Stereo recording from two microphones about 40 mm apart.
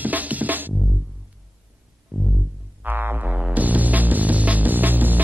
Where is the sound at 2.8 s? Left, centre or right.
Right.